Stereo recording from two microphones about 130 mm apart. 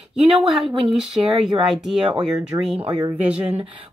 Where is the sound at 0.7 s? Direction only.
45° right (ahead or behind).